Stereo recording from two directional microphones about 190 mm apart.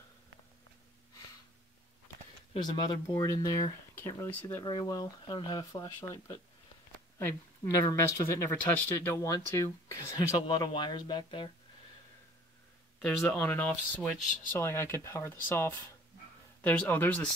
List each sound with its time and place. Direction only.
2.5 s speech: 25° left (ahead or behind)
4.6 s speech: 20° left (ahead or behind)
13.2 s speech: 10° left (ahead or behind)